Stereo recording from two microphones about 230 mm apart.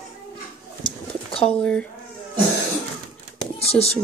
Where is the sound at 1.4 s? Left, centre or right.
Centre.